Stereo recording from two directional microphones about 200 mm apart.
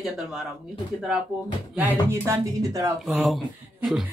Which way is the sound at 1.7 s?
10° right (ahead or behind).